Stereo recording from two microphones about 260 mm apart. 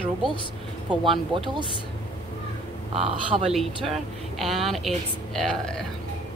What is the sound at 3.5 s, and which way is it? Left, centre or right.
A woman's voice, centre.